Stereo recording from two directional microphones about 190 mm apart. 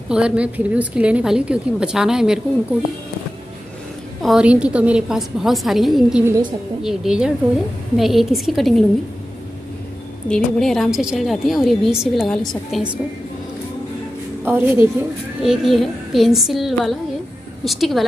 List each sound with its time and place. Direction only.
0.1 s a woman's voice: 5° right (ahead or behind)
4.2 s a woman's voice: 5° right (ahead or behind)
6.2 s a woman's voice: 15° right (ahead or behind)
6.8 s a woman's voice: 5° right (ahead or behind)
10.2 s a woman's voice: 5° left (ahead or behind)
14.4 s a woman's voice: 10° right (ahead or behind)